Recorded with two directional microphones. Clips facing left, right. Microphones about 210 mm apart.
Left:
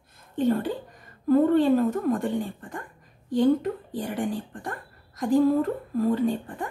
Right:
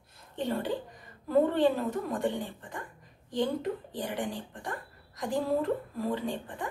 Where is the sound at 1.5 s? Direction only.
50° left (ahead or behind).